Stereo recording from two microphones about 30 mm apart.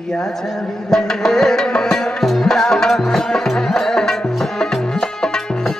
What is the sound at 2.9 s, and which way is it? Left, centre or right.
Music, centre.